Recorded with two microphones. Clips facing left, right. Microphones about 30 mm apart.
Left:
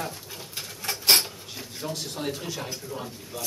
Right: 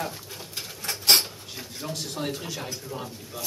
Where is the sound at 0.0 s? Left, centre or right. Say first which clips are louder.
Right 1 dB; centre.